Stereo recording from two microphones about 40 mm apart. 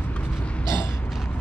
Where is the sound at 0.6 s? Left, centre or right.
Left.